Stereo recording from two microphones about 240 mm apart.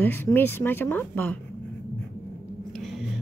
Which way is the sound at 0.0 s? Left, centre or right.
Centre.